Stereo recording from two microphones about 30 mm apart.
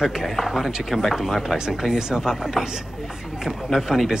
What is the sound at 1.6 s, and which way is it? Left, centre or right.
Speech, right.